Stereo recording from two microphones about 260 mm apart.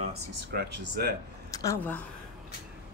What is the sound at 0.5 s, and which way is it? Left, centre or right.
Speech, right.